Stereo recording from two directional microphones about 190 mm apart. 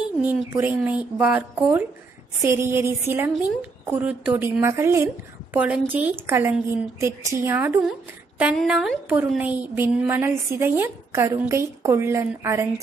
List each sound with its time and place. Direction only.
0.3 s a woman's voice: 10° right (ahead or behind)